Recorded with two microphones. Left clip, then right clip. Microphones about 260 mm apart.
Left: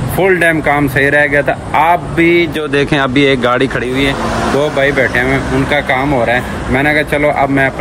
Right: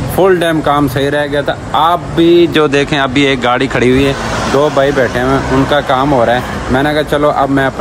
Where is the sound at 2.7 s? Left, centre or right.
Centre.